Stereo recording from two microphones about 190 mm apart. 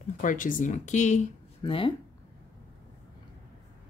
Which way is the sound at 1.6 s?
25° left (ahead or behind).